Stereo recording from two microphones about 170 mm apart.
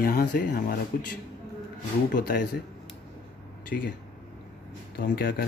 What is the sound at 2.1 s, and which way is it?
Speech, 50° left (ahead or behind).